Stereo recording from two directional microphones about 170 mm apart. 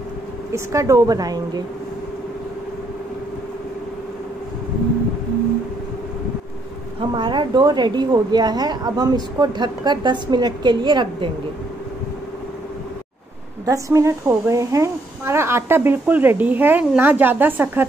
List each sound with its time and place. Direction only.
0.5 s a woman's voice: 20° right (ahead or behind)
7.0 s a woman's voice: 30° right (ahead or behind)
13.7 s a woman's voice: 20° right (ahead or behind)